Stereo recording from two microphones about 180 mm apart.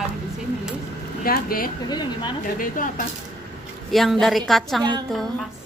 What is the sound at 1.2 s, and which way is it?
Speech, 55° left (ahead or behind).